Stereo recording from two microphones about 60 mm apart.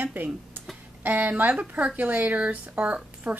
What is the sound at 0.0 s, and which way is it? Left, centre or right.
A woman's voice, right.